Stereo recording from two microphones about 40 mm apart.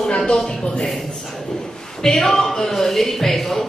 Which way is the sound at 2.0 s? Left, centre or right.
Centre.